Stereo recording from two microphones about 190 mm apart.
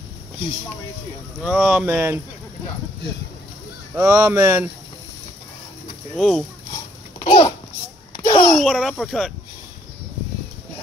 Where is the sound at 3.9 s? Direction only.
15° right (ahead or behind).